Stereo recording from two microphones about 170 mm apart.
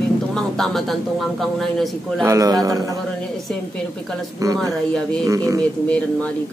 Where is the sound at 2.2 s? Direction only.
20° right (ahead or behind).